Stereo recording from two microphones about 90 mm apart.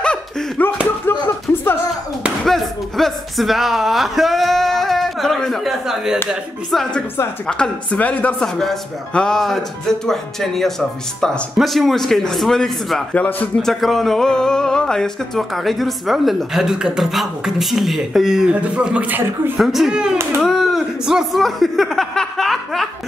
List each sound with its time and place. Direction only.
0.0 s laughter: 10° left (ahead or behind)
1.5 s music: 25° left (ahead or behind)
2.4 s a woman's voice: centre (ahead or behind)
13.1 s a woman's voice: 15° left (ahead or behind)
13.6 s speech: centre (ahead or behind); by 19.5 s 20° right (ahead or behind)
19.6 s speech: centre (ahead or behind)